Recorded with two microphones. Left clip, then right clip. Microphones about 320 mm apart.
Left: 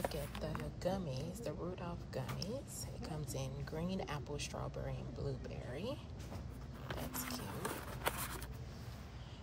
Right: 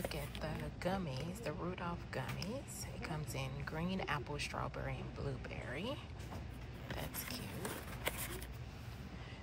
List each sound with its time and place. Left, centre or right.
0.0 s speech: centre